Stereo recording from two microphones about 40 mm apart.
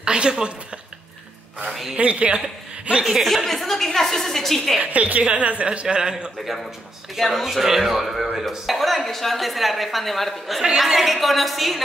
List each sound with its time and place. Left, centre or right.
0.0 s a woman's voice: right
1.7 s speech: centre
2.0 s a woman's voice: right
2.4 s speech: centre
3.4 s a woman's voice: centre
4.8 s a woman's voice: right
5.9 s a man's voice: right
6.4 s speech: centre
7.4 s speech: centre